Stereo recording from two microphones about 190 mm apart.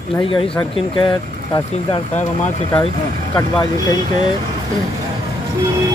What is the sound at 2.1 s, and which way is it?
Speech, 40° left (ahead or behind).